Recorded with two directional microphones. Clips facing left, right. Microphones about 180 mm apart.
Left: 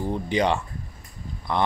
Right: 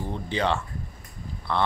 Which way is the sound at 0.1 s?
15° left (ahead or behind).